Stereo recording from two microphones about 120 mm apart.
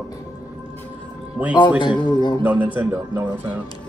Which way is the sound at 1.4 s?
10° right (ahead or behind).